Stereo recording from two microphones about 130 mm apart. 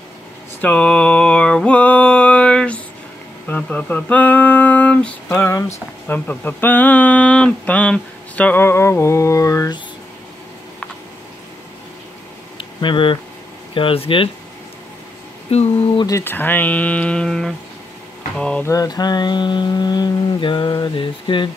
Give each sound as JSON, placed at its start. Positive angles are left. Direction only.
{"t": 0.6, "sound": "mantra", "side_deg": 10}
{"t": 3.4, "sound": "a sound", "side_deg": 10}
{"t": 12.5, "sound": "a sound", "side_deg": 40}
{"t": 13.7, "sound": "speech", "side_deg": 45}
{"t": 15.5, "sound": "speech", "side_deg": 50}
{"t": 16.1, "sound": "speech", "side_deg": 20}
{"t": 18.7, "sound": "mantra", "side_deg": 30}